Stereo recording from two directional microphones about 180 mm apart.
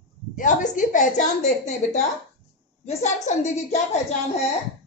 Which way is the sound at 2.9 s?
35° left (ahead or behind).